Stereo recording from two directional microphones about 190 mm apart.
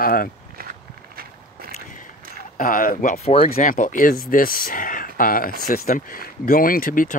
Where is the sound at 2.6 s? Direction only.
50° left (ahead or behind).